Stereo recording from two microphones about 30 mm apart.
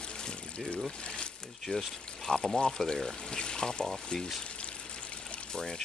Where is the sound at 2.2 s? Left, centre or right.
Centre.